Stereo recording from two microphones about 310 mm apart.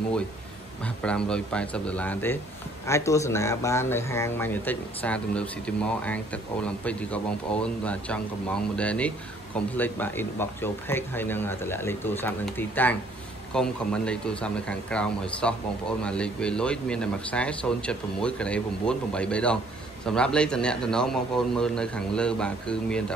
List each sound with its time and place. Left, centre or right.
0.8 s speech: centre